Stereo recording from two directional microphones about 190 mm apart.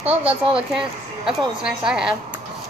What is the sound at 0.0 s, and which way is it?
Speech, 30° right (ahead or behind).